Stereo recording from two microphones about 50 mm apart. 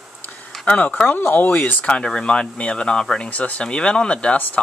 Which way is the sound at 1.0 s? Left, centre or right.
Left.